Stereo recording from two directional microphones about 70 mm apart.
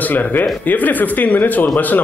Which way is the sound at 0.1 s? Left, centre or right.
Left.